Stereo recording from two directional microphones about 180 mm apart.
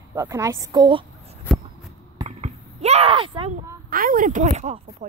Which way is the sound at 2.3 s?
35° right (ahead or behind).